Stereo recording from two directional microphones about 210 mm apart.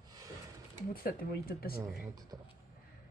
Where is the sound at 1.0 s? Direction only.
45° left (ahead or behind).